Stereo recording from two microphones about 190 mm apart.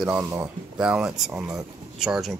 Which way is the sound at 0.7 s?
5° right (ahead or behind).